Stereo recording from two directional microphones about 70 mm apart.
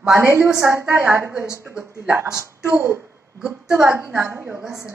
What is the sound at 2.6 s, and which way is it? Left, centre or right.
A child's voice, right.